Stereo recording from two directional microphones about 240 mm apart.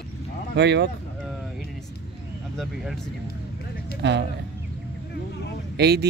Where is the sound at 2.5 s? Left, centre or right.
Centre.